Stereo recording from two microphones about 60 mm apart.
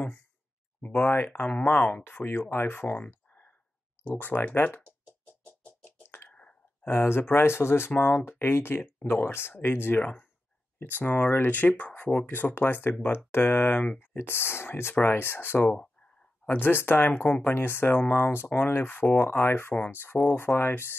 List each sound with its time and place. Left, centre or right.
0.7 s speech: left
1.0 s speech: left
2.0 s speech: left
3.1 s a sound: left
4.0 s speech: left
5.7 s a sound: left
6.2 s whispering: left
6.9 s speech: left
15.7 s a sound: centre
16.4 s speech: left